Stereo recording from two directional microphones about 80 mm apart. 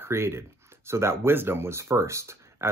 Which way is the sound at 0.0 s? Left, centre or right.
Right.